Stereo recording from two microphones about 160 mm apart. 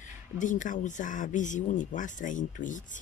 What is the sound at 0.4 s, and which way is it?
Speech, 55° left (ahead or behind).